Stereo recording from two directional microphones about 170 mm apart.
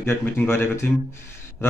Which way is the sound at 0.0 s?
15° left (ahead or behind).